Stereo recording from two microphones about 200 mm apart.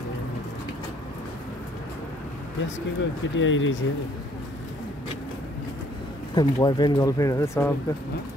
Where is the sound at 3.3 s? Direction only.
70° left (ahead or behind).